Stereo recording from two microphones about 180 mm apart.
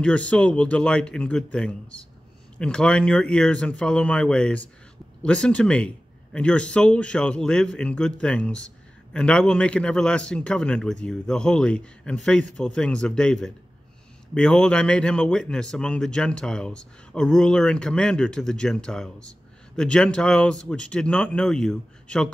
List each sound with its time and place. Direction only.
0.0 s speech: 5° left (ahead or behind)